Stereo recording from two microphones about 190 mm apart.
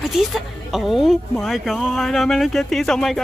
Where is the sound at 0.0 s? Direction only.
Centre (ahead or behind).